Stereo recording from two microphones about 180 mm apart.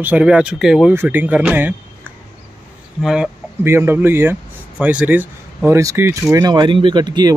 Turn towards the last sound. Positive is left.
turn(degrees=-25)  # may be behind; listen again after turning